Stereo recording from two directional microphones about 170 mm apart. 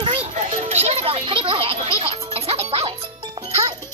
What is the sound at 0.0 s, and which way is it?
Music, 35° right (ahead or behind).